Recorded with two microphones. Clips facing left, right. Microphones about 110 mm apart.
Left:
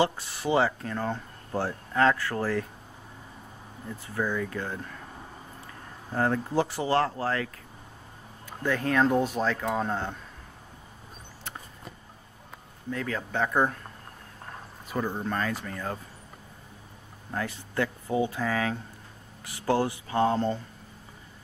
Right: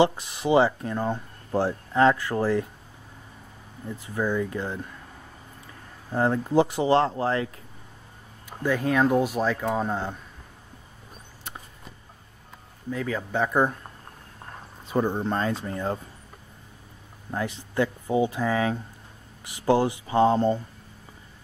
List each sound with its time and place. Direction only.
0.0 s speech: 20° right (ahead or behind)
3.9 s speech: 15° right (ahead or behind)
6.1 s speech: 20° right (ahead or behind)
12.9 s speech: 10° right (ahead or behind)
14.9 s speech: 25° right (ahead or behind)
17.3 s speech: 15° right (ahead or behind)